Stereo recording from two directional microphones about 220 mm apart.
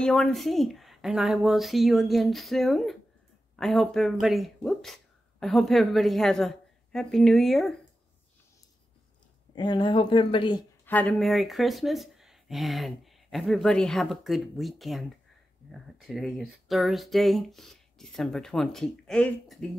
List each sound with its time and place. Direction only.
0.0 s speech: centre (ahead or behind)
9.6 s speech: 20° left (ahead or behind)
10.9 s speech: 5° left (ahead or behind)